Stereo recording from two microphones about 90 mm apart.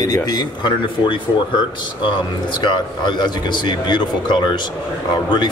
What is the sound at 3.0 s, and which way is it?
Speech, 55° left (ahead or behind).